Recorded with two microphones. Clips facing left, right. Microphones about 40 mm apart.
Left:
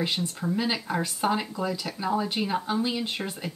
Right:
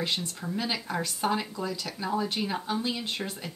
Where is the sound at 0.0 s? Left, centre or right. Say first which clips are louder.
Left 3 dB; centre.